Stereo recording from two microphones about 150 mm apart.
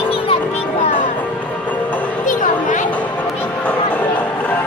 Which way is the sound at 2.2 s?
55° left (ahead or behind).